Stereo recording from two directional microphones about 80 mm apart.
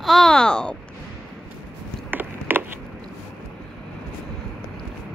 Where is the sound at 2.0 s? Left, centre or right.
Right.